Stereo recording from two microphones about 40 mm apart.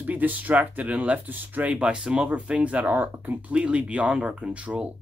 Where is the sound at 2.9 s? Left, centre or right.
Right.